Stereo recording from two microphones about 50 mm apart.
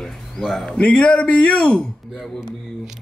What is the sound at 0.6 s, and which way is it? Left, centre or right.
Speech, centre.